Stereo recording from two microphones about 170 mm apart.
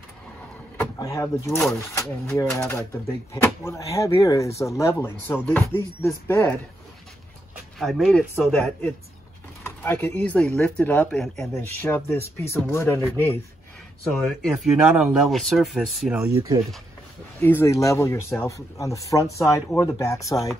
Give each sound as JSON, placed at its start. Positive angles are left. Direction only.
{"t": 0.7, "sound": "speech", "side_deg": 20}
{"t": 7.8, "sound": "speech", "side_deg": 0}
{"t": 9.6, "sound": "speech", "side_deg": 15}
{"t": 11.5, "sound": "speech", "side_deg": 15}
{"t": 14.0, "sound": "speech", "side_deg": 0}
{"t": 17.4, "sound": "speech", "side_deg": 15}